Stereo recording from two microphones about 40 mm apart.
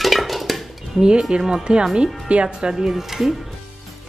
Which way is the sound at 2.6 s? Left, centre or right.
Centre.